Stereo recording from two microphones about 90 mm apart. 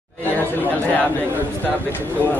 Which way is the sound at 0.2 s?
20° left (ahead or behind).